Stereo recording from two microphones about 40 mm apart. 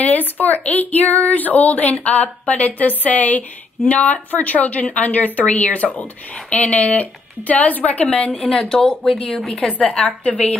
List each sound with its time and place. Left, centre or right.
0.0 s speech: left
8.1 s a woman's voice: left; by 9.7 s centre
10.0 s speech: left